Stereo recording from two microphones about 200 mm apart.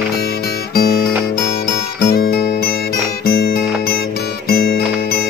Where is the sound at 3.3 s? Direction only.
50° left (ahead or behind).